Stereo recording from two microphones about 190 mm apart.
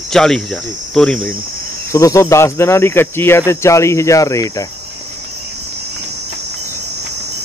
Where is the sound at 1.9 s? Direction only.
15° left (ahead or behind).